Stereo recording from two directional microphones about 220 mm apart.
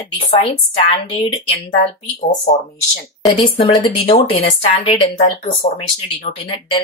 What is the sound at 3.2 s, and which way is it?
A woman's voice, 20° left (ahead or behind).